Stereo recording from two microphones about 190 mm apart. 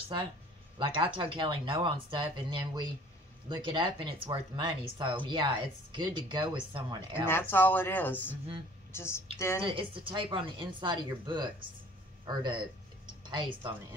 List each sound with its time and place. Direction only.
0.7 s speech: 25° right (ahead or behind)
7.2 s speech: 10° left (ahead or behind)
9.7 s speech: 25° right (ahead or behind)
12.3 s a sound: 25° right (ahead or behind)